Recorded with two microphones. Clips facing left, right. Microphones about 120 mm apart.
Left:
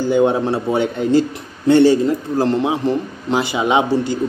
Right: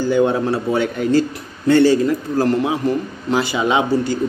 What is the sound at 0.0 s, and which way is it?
A man's voice, 20° left (ahead or behind).